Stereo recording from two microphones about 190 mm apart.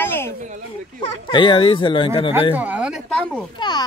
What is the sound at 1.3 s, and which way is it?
Speech, 25° left (ahead or behind).